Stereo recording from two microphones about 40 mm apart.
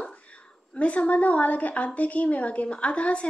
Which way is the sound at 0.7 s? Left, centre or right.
Left.